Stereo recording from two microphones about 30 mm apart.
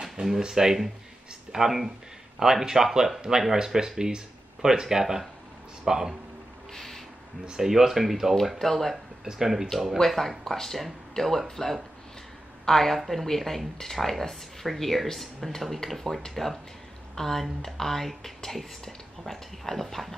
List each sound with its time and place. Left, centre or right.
0.2 s speech: right
6.7 s a sound: centre
7.6 s speech: centre
8.5 s speech: centre
9.2 s speech: centre
10.0 s speech: centre